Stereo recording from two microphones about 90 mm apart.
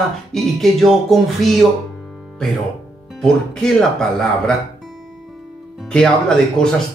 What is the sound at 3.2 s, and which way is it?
Speech, 5° left (ahead or behind).